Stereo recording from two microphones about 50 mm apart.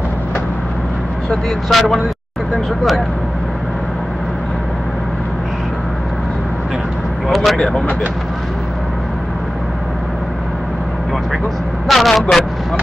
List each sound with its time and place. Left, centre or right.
1.7 s speech: centre
7.2 s vehicle: centre
7.5 s speech: centre
11.9 s speech: centre